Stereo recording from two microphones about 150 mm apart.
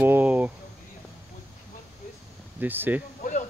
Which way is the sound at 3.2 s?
55° left (ahead or behind).